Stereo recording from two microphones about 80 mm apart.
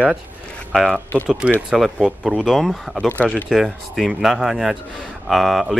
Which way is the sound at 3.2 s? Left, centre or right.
Centre.